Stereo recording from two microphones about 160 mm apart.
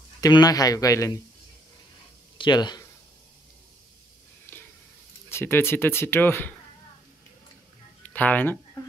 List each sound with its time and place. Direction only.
0.2 s a man's voice: 25° left (ahead or behind)
2.3 s speech: 30° left (ahead or behind)
4.5 s a sound: 10° left (ahead or behind)
5.3 s speech: 15° left (ahead or behind)
8.0 s speech: 10° left (ahead or behind)